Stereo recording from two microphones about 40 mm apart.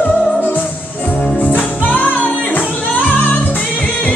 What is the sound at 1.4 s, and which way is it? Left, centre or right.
Music, left.